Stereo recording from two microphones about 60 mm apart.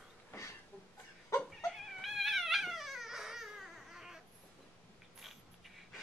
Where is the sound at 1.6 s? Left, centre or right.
Centre.